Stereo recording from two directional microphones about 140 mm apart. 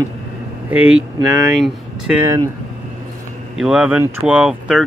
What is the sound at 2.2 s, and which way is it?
Speech, 25° right (ahead or behind).